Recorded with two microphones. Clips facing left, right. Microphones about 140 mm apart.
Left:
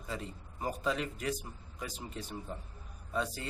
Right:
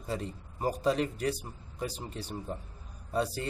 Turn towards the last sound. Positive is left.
turn(degrees=-35)  # may be behind; listen again after turning